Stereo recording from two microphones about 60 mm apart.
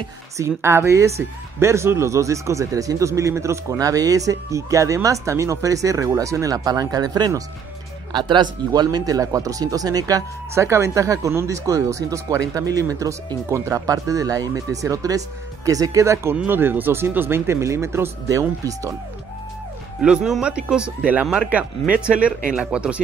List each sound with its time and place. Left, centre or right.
0.4 s speech: right
9.0 s speech: right
10.5 s speech: right
13.8 s speech: right
16.4 s speech: right
18.3 s speech: right
20.0 s speech: centre
22.5 s speech: centre